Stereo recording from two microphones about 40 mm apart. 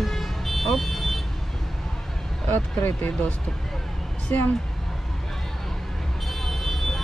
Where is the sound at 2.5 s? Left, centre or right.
Left.